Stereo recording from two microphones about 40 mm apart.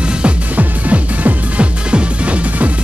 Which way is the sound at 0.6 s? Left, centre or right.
Right.